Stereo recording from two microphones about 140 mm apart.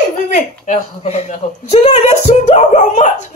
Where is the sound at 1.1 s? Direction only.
50° left (ahead or behind).